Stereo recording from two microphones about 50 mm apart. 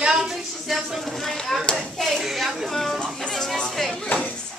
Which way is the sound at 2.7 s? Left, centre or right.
Centre.